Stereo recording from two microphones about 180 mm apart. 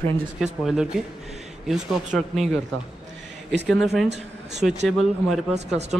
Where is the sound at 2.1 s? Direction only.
Centre (ahead or behind).